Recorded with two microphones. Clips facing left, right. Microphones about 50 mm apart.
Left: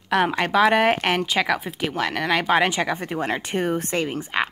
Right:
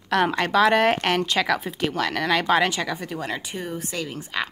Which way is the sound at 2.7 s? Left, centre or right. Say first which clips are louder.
Left 3 dB; left.